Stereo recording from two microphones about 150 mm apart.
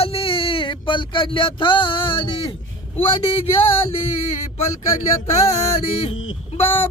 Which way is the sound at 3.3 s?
40° left (ahead or behind).